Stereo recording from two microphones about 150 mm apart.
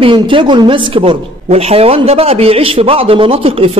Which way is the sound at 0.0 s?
35° right (ahead or behind).